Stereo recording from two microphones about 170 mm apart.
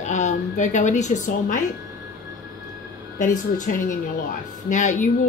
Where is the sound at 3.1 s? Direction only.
50° left (ahead or behind).